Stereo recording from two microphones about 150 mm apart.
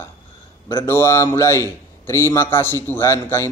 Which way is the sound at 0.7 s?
15° left (ahead or behind).